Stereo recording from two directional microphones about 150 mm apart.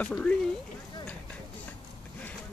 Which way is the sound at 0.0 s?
10° left (ahead or behind).